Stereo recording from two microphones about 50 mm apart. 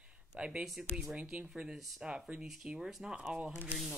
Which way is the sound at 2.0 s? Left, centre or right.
Right.